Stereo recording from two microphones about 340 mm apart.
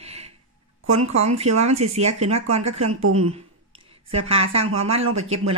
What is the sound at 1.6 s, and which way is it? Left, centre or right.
Speech, centre.